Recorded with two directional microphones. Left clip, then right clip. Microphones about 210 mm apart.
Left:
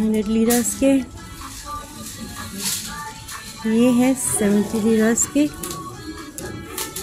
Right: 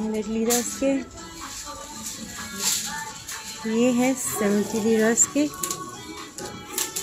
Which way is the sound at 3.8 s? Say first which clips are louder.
Left 4 dB; 5° left (ahead or behind).